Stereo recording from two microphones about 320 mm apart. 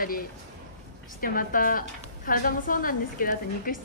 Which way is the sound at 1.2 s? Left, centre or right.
Left.